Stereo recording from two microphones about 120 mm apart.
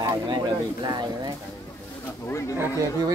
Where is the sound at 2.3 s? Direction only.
25° left (ahead or behind).